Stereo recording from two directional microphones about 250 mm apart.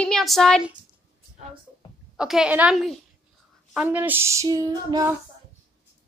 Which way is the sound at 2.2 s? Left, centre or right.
Centre.